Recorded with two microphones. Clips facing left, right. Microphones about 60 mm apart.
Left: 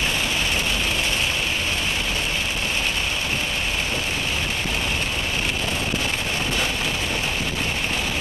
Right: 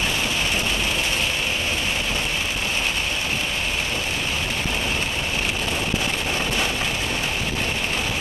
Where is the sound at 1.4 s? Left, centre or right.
Centre.